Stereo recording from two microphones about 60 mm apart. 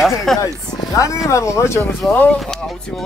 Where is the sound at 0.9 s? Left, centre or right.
Left.